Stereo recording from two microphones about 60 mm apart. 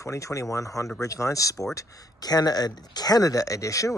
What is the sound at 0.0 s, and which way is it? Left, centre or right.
Speech, left.